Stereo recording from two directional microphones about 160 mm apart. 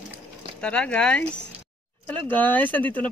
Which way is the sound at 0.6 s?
5° left (ahead or behind).